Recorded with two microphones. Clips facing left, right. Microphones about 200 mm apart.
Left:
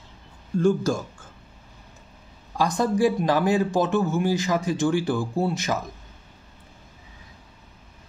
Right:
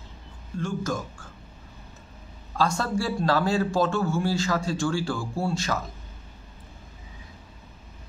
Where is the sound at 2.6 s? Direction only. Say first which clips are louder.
Left 5 dB; 15° left (ahead or behind).